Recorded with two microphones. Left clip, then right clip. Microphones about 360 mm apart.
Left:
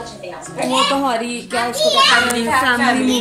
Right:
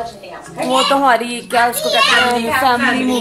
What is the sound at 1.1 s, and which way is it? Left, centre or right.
Speech, centre.